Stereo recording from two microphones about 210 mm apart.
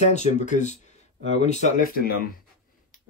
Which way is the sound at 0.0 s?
35° left (ahead or behind).